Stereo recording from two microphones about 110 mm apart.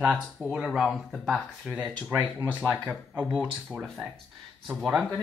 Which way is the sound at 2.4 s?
20° right (ahead or behind).